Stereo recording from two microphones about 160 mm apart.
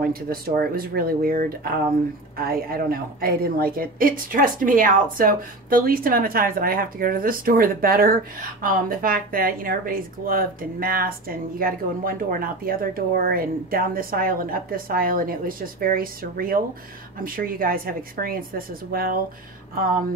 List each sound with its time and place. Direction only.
0.0 s speech: 65° right (ahead or behind)